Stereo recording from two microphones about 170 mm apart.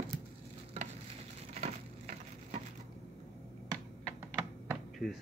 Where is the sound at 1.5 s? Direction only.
45° right (ahead or behind).